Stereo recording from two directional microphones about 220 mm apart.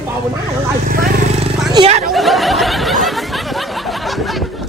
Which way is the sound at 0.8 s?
40° right (ahead or behind).